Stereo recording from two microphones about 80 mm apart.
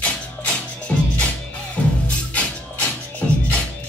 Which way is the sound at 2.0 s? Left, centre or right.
Centre.